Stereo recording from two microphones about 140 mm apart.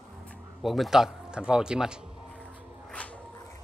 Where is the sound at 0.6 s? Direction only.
Centre (ahead or behind).